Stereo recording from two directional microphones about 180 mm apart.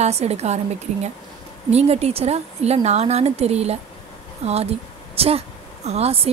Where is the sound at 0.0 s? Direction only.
35° right (ahead or behind).